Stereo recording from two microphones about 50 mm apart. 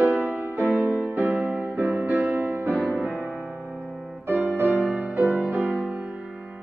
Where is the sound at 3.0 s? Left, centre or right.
Right.